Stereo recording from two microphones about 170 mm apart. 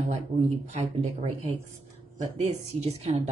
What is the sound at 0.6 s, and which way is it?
A woman's voice, 40° right (ahead or behind).